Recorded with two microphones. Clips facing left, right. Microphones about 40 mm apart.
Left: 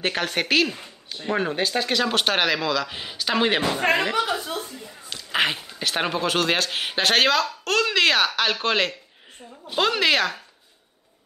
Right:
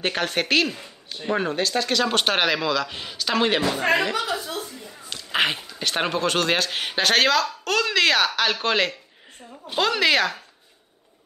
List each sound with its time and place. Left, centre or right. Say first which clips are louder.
0.0 s a man's voice: even; centre
1.6 s speech: even; centre
2.0 s a man's voice: even; centre
4.1 s a woman's voice: left 2 dB; left
4.8 s a sound: right 1 dB; centre
5.8 s a man's voice: right 1 dB; centre